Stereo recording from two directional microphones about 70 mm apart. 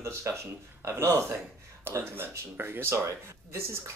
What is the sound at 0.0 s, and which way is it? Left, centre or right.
Speech, right.